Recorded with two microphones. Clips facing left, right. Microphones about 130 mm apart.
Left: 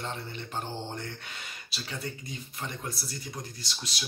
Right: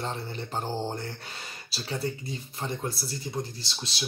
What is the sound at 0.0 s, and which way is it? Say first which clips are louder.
Speech: right 3 dB; 35° right (ahead or behind).